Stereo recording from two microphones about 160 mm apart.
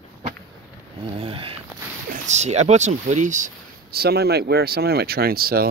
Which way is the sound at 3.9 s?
80° right.